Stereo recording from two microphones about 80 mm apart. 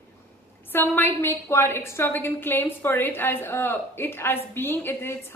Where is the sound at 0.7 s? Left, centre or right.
Left.